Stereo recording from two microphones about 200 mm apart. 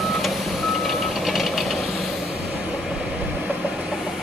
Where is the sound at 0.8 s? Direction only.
Centre (ahead or behind).